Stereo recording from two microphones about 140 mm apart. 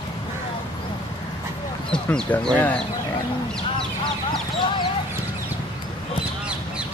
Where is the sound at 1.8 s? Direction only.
10° left (ahead or behind).